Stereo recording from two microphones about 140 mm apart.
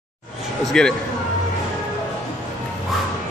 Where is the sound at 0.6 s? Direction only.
5° left (ahead or behind).